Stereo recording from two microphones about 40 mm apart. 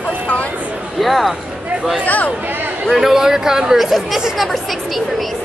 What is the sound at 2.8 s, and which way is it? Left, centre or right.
Speech, centre.